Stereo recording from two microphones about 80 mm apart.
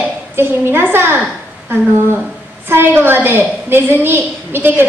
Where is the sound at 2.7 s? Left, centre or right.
Right.